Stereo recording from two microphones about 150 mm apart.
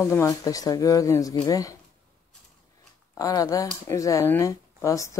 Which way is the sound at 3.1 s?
25° left (ahead or behind).